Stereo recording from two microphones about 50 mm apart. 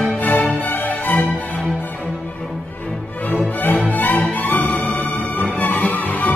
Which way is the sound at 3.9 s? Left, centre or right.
Left.